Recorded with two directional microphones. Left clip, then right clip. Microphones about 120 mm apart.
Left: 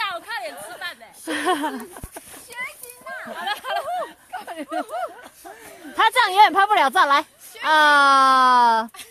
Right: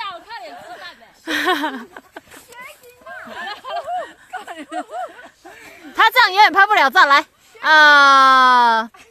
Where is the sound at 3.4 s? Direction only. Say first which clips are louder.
Left 2 dB; 25° left (ahead or behind).